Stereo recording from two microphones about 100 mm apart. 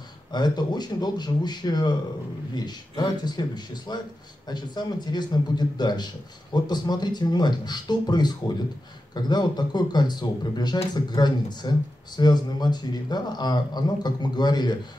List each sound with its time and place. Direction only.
0.3 s a man's voice: 45° left (ahead or behind)